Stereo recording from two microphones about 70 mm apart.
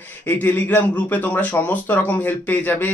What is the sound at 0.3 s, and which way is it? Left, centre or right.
Speech, left.